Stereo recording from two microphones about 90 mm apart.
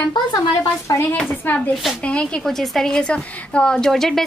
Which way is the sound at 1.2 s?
20° left (ahead or behind).